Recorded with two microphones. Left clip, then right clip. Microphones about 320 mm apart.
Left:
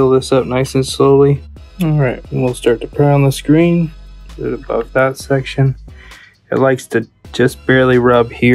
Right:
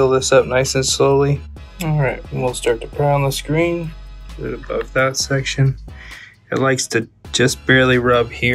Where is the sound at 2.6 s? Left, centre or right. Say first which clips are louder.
Left 6 dB; left.